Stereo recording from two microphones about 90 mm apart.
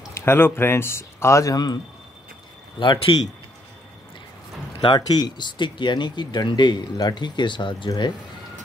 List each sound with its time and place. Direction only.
0.1 s speech: 25° left (ahead or behind); by 1.8 s 45° left (ahead or behind)
2.8 s speech: 65° left (ahead or behind)
4.8 s speech: 50° left (ahead or behind)